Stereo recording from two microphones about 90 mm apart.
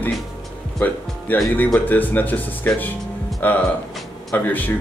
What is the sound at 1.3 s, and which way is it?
Speech, 20° left (ahead or behind).